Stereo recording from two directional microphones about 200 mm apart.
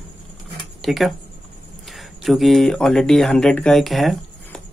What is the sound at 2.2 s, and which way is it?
Speech, centre (ahead or behind).